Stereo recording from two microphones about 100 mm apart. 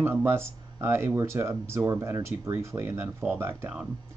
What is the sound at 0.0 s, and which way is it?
Speech, 25° right (ahead or behind).